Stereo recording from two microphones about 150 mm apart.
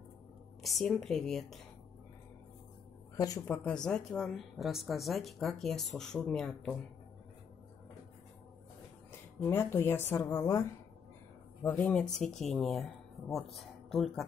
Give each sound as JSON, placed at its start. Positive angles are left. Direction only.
{"t": 0.6, "sound": "speech", "side_deg": 0}
{"t": 3.2, "sound": "speech", "side_deg": 25}
{"t": 3.5, "sound": "speech", "side_deg": 5}
{"t": 9.4, "sound": "speech", "side_deg": 15}
{"t": 11.6, "sound": "speech", "side_deg": 10}